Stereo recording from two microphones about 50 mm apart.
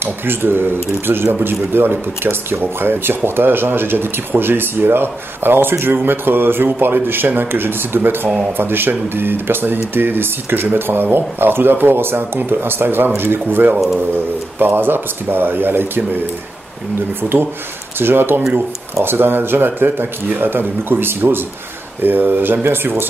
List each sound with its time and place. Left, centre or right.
0.0 s speech: right
17.2 s speech: right